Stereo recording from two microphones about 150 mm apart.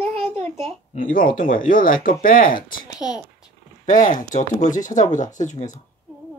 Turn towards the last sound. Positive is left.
turn(degrees=55)  # may be behind; listen again after turning